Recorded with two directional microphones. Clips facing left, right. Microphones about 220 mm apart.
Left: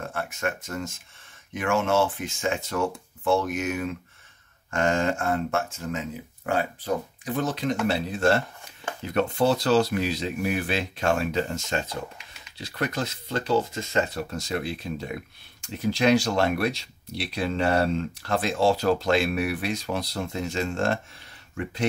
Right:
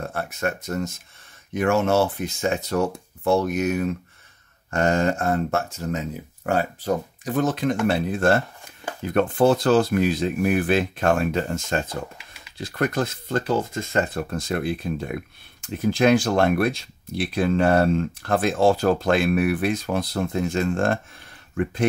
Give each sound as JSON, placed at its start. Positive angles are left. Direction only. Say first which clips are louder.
{"t": 0.1, "sound": "speech", "louder": "right 3 dB", "side_deg": -40}